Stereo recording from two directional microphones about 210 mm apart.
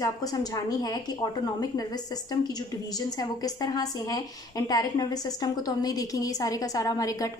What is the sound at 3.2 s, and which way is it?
A woman's voice, 20° left (ahead or behind).